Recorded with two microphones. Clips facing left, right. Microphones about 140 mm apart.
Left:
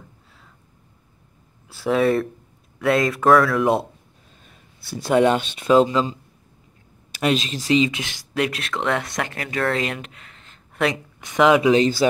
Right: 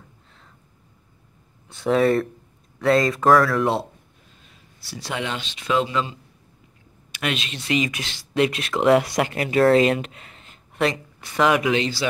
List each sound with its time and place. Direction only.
1.7 s speech: 5° left (ahead or behind)
4.5 s speech: 50° left (ahead or behind); by 8.1 s 25° left (ahead or behind)
8.4 s speech: centre (ahead or behind)
9.2 s speech: 15° right (ahead or behind)
11.1 s speech: 20° left (ahead or behind)
11.7 s speech: 40° left (ahead or behind)